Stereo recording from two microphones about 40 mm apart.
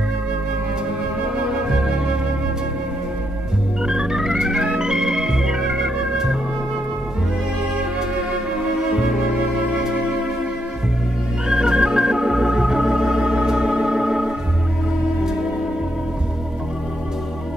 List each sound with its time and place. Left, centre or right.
1.3 s music: right
3.8 s organ: centre
8.3 s music: centre
11.4 s organ: centre